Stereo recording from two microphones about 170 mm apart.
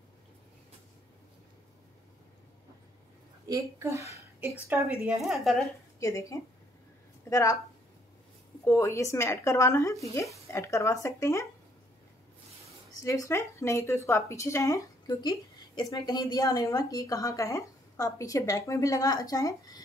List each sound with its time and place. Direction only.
3.4 s a woman's voice: 20° right (ahead or behind); by 5.7 s centre (ahead or behind)
5.9 s a woman's voice: 20° left (ahead or behind)
8.6 s a woman's voice: 15° left (ahead or behind)
12.9 s a woman's voice: 20° left (ahead or behind)